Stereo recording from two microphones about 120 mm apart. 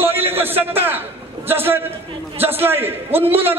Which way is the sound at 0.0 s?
20° right (ahead or behind).